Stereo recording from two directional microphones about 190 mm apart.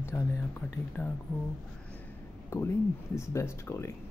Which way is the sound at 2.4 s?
15° left (ahead or behind).